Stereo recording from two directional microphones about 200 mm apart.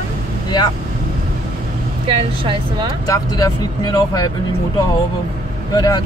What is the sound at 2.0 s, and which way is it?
Speech, 25° right (ahead or behind).